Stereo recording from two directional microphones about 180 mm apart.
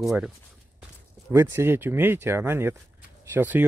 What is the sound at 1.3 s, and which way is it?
Speech, 15° right (ahead or behind).